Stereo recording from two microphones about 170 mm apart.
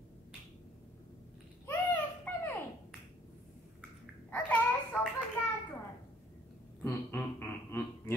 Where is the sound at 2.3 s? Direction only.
10° left (ahead or behind).